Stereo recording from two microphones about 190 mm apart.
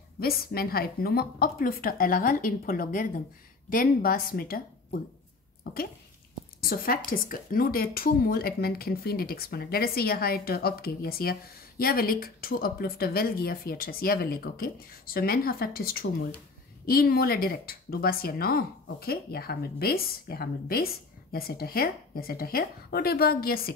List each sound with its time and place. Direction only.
0.2 s speech: 55° left (ahead or behind)